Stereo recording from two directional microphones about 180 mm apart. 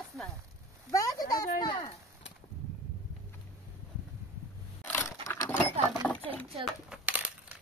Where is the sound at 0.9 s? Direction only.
20° left (ahead or behind).